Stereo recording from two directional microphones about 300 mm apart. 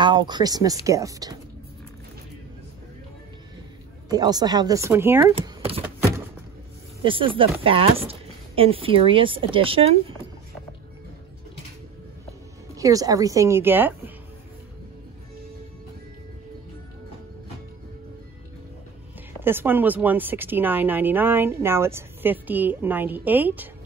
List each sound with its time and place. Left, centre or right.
0.0 s speech: centre
4.1 s speech: centre
5.3 s speech: centre
7.0 s speech: centre
12.7 s speech: centre
19.4 s speech: centre